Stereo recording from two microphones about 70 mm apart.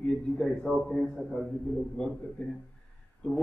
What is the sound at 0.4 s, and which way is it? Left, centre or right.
A man's voice, centre.